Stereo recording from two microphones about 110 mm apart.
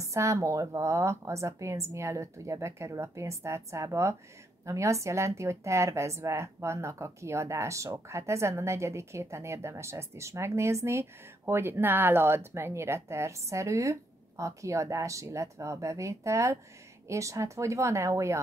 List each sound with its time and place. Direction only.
0.0 s a woman's voice: 30° right (ahead or behind)